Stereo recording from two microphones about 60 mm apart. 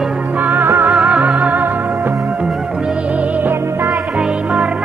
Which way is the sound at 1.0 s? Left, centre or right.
Right.